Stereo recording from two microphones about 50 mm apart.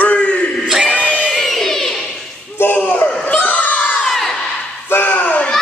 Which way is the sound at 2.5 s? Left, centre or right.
Left.